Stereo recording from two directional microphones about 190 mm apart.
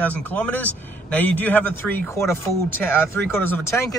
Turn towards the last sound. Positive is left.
turn(degrees=10)  # may be behind; listen again after turning